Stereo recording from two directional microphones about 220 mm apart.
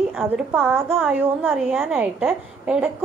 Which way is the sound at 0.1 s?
5° right (ahead or behind).